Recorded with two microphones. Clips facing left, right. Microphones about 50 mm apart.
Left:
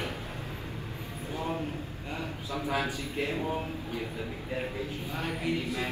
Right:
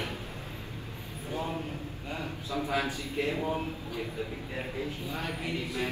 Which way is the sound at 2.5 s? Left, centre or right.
Left.